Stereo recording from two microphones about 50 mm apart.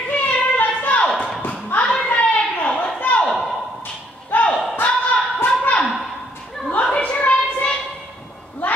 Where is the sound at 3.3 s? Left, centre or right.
Centre.